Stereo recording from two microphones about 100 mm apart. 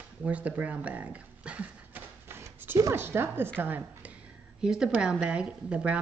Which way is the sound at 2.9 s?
25° right (ahead or behind).